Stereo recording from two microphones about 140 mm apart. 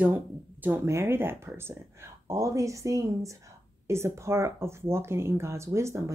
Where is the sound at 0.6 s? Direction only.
15° right (ahead or behind).